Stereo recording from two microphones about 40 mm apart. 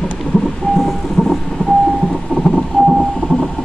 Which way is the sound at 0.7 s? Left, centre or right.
Centre.